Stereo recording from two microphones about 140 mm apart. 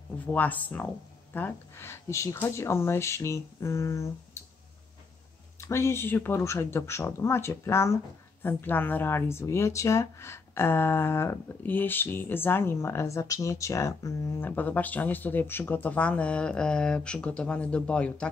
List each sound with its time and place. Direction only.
0.3 s speech: 10° left (ahead or behind)
5.6 s speech: 20° left (ahead or behind)